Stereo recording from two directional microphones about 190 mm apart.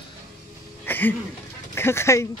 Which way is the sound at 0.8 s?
10° left (ahead or behind).